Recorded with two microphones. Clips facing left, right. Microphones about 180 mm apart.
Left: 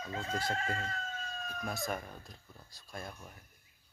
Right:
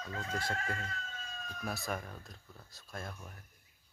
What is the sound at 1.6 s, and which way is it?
Speech, centre (ahead or behind).